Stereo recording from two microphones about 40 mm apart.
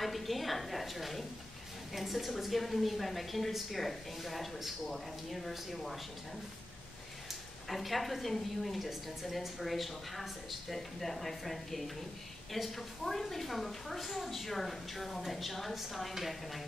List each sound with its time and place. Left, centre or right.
0.0 s a woman's voice: centre
7.7 s a woman's voice: centre